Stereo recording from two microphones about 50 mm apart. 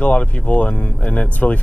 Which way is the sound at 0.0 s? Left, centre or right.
Left.